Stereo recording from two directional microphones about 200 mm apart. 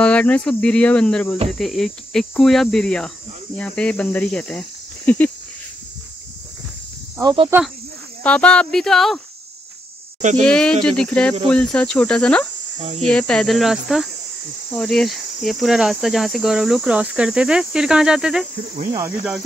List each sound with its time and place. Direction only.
0.0 s cricket: 5° left (ahead or behind)
7.2 s speech: 20° right (ahead or behind)
8.2 s cricket: 5° left (ahead or behind)
10.4 s cricket: 5° left (ahead or behind)
12.7 s cricket: 35° right (ahead or behind)
13.0 s cricket: 5° left (ahead or behind)
18.9 s speech: 5° right (ahead or behind)